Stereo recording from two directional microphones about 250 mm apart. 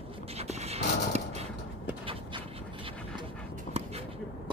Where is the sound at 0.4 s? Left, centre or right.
Right.